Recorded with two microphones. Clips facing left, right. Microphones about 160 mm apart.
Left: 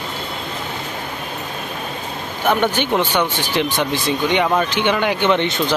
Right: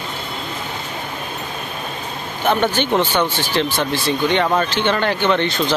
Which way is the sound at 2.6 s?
10° left (ahead or behind).